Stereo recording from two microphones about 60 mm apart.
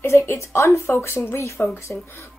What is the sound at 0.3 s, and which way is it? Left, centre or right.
Speech, left.